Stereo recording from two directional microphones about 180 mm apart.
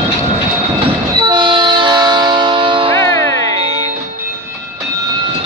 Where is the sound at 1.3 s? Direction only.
25° right (ahead or behind).